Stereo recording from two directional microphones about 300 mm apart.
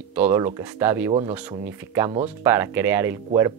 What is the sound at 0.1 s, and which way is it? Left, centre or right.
Speech, centre.